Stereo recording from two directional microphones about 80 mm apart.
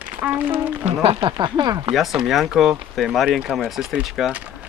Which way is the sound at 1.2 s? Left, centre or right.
Right.